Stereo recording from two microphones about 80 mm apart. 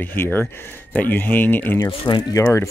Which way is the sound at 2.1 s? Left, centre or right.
Left.